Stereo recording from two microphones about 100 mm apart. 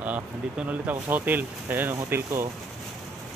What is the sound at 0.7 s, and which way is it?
Speech, 20° right (ahead or behind).